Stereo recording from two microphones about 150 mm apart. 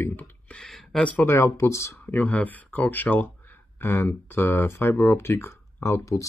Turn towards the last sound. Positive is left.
turn(degrees=20)  # may be behind; listen again after turning